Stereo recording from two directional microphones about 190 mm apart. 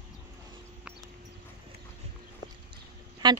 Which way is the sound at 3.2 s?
25° right (ahead or behind).